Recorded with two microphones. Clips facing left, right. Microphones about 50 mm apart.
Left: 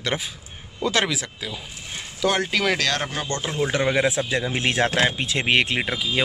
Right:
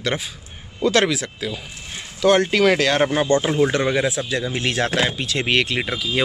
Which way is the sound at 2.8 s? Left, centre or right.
Centre.